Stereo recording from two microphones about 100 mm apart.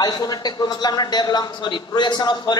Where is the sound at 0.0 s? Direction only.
40° left (ahead or behind).